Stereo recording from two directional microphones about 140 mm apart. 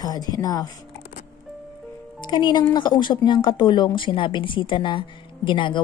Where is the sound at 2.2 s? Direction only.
35° left (ahead or behind).